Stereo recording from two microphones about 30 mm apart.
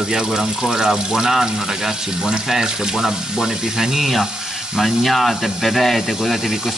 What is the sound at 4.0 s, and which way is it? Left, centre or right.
Speech, centre.